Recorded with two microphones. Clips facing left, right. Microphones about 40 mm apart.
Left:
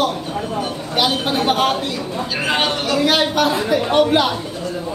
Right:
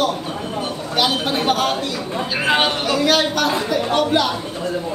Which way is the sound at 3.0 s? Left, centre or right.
Centre.